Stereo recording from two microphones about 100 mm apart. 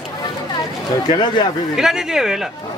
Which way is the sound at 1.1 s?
50° left (ahead or behind).